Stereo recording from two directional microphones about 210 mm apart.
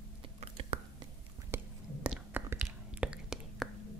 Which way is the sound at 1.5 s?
5° right (ahead or behind).